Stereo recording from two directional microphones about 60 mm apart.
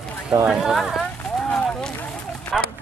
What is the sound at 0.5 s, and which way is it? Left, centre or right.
Speech, centre.